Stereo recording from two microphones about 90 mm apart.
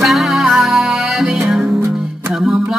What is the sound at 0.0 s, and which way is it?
Music, centre (ahead or behind).